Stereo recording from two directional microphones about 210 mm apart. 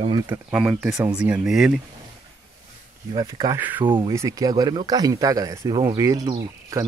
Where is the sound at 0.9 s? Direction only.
15° right (ahead or behind).